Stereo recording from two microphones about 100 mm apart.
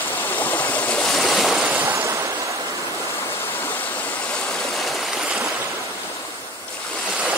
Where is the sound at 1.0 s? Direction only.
Centre (ahead or behind).